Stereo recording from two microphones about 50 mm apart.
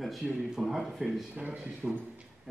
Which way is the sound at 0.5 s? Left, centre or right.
Centre.